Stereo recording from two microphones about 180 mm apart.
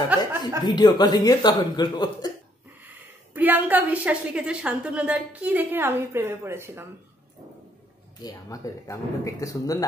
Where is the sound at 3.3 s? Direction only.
10° right (ahead or behind).